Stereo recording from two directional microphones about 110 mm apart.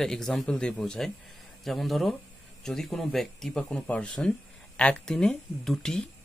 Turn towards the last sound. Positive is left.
turn(degrees=0)  # may be behind; listen again after turning